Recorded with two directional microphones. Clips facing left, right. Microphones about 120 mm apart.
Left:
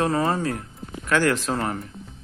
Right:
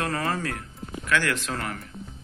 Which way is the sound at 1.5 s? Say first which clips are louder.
Left 6 dB; 25° left (ahead or behind).